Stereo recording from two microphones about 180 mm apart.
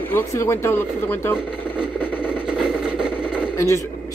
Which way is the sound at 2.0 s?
10° left (ahead or behind).